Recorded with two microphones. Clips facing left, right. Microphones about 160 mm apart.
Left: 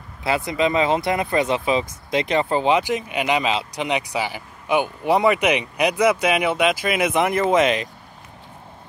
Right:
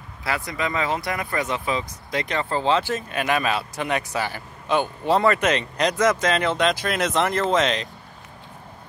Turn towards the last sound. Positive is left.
turn(degrees=5)  # may be behind; listen again after turning